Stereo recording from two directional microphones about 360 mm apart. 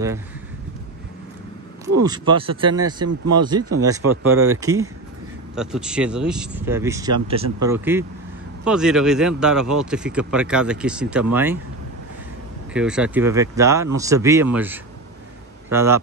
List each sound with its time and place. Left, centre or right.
2.0 s speech: centre
3.1 s speech: right
4.6 s speech: centre
12.7 s speech: centre